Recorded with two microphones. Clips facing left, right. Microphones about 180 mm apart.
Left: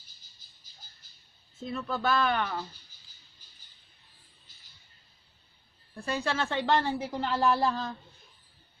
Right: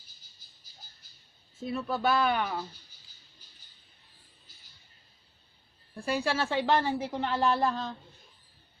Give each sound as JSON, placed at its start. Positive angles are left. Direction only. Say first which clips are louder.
{"t": 1.7, "sound": "speech", "louder": "right 1 dB", "side_deg": -10}
{"t": 5.9, "sound": "a woman's voice", "louder": "right 1 dB", "side_deg": -10}